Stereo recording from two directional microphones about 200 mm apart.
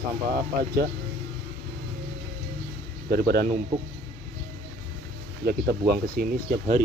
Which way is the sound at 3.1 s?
50° right (ahead or behind).